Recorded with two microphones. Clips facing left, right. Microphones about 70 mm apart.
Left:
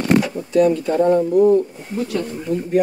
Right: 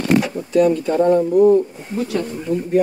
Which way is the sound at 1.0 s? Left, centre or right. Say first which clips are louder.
Right 1 dB; centre.